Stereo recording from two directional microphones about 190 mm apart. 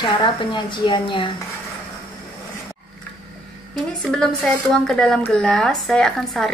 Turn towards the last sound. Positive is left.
turn(degrees=0)  # may be behind; listen again after turning